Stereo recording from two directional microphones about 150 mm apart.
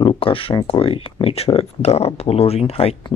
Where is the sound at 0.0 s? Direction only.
35° left (ahead or behind).